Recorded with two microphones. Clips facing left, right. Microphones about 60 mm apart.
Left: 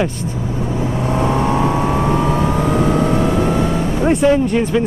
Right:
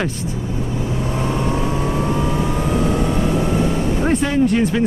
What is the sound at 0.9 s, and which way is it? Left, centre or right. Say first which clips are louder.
Vehicle: left 5 dB; left.